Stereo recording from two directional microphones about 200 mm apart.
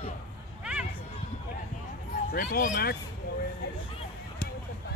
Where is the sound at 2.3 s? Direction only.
45° left (ahead or behind).